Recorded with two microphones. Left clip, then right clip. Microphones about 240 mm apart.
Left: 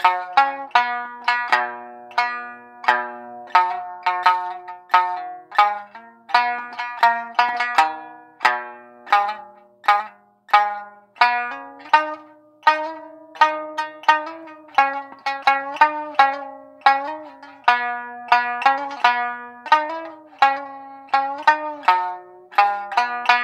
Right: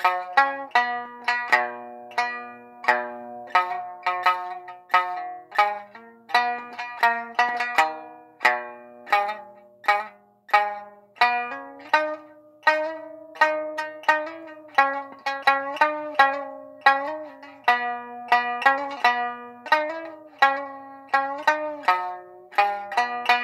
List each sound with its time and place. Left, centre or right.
0.0 s music: centre
12.6 s zither: centre